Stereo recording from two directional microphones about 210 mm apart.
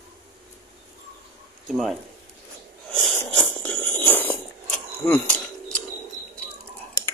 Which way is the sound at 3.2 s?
5° left (ahead or behind).